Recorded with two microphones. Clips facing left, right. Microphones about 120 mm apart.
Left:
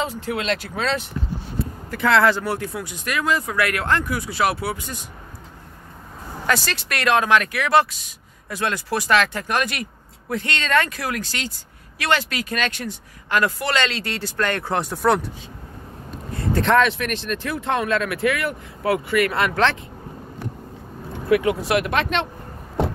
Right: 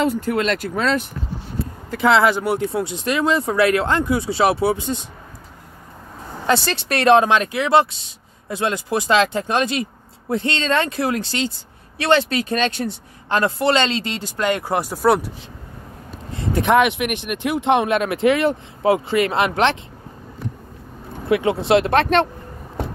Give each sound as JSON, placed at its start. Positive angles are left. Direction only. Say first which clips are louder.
{"t": 0.0, "sound": "speech", "louder": "right 6 dB", "side_deg": -50}
{"t": 1.9, "sound": "speech", "louder": "right 2 dB", "side_deg": -15}
{"t": 6.4, "sound": "speech", "louder": "right 4 dB", "side_deg": -25}
{"t": 16.3, "sound": "speech", "louder": "right 2 dB", "side_deg": -15}
{"t": 21.3, "sound": "speech", "louder": "right 2 dB", "side_deg": -25}